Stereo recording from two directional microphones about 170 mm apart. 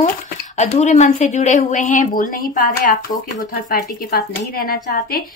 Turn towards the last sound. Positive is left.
turn(degrees=60)  # may be behind; listen again after turning